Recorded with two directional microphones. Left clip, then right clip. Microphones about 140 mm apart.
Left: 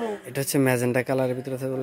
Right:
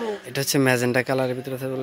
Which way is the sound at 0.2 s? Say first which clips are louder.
Right 3 dB; 5° left (ahead or behind).